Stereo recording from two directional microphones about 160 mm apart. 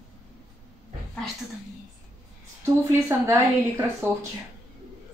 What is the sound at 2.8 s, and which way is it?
A woman's voice, 20° right (ahead or behind).